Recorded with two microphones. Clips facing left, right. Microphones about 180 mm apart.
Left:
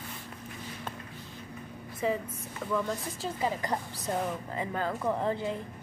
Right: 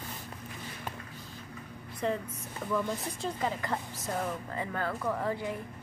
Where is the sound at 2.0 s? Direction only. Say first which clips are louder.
Left 2 dB; 5° left (ahead or behind).